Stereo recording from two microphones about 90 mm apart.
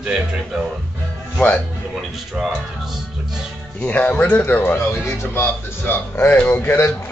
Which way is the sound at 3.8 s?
15° left (ahead or behind).